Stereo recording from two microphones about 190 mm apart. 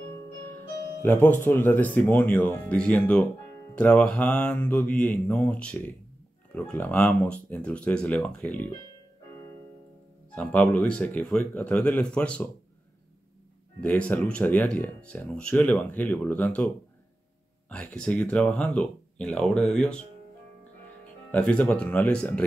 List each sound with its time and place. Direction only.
1.0 s speech: 10° left (ahead or behind)
10.3 s speech: 5° left (ahead or behind)
13.7 s speech: 5° left (ahead or behind)
21.3 s speech: 5° left (ahead or behind)